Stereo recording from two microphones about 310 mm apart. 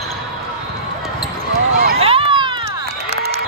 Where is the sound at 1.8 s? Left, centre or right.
Centre.